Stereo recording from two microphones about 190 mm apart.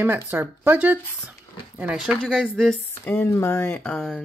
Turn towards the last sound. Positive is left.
turn(degrees=5)  # may be behind; listen again after turning